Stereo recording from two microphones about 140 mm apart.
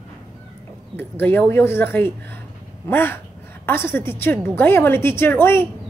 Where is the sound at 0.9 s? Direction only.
15° left (ahead or behind).